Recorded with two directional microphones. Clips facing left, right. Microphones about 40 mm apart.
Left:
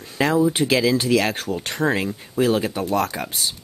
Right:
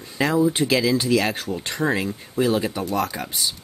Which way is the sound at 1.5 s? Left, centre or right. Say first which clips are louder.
Left 1 dB; centre.